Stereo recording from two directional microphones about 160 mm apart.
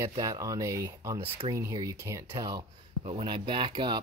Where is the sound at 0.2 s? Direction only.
20° right (ahead or behind).